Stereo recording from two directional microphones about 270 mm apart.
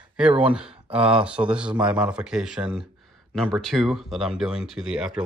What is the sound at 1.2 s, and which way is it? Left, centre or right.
Speech, centre.